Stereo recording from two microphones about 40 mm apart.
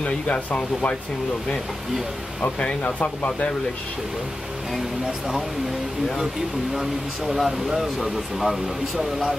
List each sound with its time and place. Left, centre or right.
0.0 s speech: left
6.7 s speech: centre